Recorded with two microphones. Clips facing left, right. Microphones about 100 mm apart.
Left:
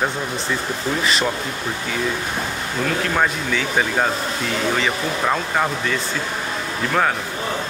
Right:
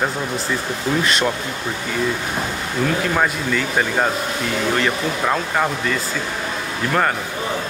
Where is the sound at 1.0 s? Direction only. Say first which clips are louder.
Left 1 dB; centre (ahead or behind).